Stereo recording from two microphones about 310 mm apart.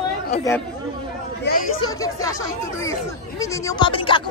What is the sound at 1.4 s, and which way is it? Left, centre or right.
Speech, left.